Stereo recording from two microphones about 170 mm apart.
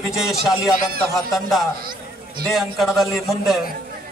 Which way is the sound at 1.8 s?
60° right (ahead or behind).